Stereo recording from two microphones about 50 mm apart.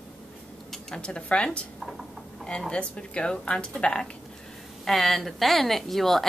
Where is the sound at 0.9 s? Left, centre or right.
Centre.